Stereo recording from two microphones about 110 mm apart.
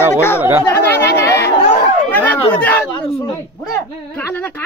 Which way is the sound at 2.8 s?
55° left (ahead or behind).